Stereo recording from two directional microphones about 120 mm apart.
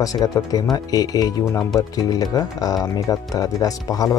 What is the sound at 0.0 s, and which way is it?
Speech, 30° left (ahead or behind).